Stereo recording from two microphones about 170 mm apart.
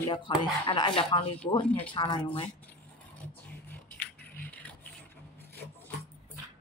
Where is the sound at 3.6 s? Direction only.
10° left (ahead or behind).